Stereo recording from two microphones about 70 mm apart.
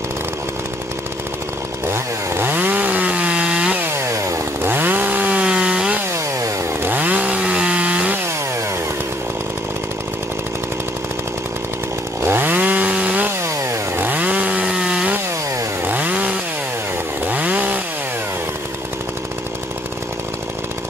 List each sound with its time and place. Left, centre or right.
1.9 s chainsaw: right; by 3.8 s centre
3.9 s chainsaw: right
4.6 s chainsaw: right; by 5.9 s centre
6.1 s chainsaw: right
6.9 s chainsaw: right
12.2 s chainsaw: right
13.4 s chainsaw: right
14.0 s chainsaw: right
15.8 s chainsaw: right